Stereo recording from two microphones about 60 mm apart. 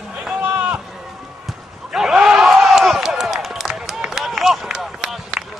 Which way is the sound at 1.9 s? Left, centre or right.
Centre.